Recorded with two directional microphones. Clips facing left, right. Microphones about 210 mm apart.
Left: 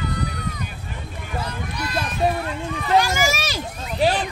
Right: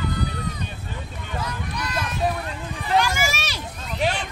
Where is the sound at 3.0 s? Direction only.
40° left (ahead or behind).